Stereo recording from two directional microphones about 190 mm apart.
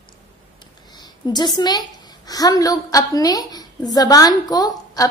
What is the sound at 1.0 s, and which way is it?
A woman's voice, 20° left (ahead or behind).